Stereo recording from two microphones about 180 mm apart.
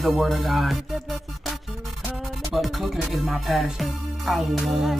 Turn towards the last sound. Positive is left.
turn(degrees=0)  # may be behind; listen again after turning